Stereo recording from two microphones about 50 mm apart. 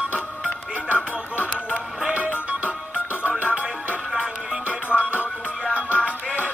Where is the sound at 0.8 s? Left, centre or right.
Right.